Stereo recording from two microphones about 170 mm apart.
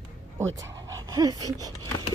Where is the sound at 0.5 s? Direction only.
20° right (ahead or behind).